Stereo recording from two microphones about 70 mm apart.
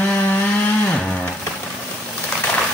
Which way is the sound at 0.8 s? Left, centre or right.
Centre.